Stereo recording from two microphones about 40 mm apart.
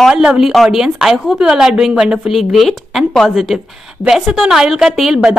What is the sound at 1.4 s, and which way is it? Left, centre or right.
Speech, centre.